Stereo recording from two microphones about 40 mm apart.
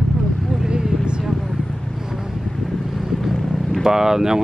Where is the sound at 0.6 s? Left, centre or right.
Centre.